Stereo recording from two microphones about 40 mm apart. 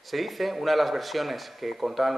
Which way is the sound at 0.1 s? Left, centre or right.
Centre.